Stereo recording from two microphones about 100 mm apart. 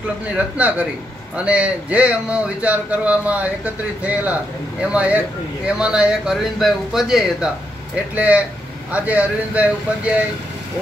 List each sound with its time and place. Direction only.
0.6 s speech: 15° right (ahead or behind)